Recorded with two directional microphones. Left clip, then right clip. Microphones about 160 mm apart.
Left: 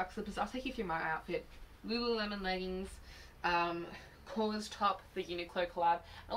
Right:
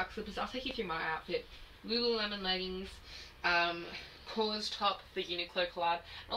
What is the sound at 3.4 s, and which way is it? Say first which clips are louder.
Speech: right 2 dB; 5° left (ahead or behind).